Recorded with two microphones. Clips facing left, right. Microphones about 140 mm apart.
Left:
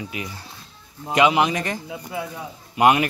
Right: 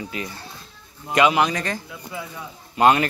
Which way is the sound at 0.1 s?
15° left (ahead or behind).